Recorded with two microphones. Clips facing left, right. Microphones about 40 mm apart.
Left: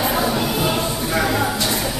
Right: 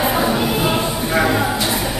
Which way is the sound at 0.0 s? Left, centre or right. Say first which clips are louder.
Right 2 dB; centre.